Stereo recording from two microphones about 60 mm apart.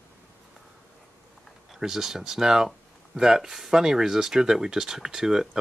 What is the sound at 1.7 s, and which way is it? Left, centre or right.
Speech, centre.